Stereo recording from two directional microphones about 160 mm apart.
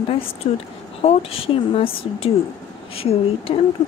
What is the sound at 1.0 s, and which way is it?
Speech, 35° left (ahead or behind).